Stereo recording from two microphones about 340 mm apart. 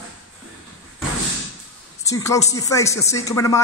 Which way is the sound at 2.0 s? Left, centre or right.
Centre.